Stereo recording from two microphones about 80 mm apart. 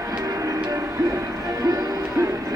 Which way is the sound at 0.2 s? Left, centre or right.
Right.